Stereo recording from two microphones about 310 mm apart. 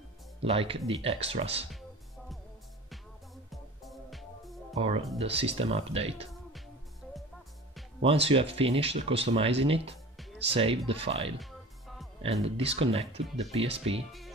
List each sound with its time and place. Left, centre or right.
0.4 s speech: centre
1.7 s music: centre
3.8 s music: centre
4.7 s speech: centre
8.0 s speech: centre
12.4 s speech: centre